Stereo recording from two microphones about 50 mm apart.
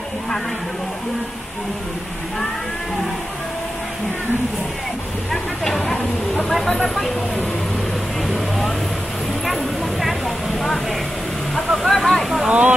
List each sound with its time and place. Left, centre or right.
5.3 s speech: centre
8.3 s vehicle: centre
11.5 s speech: centre
12.4 s speech: right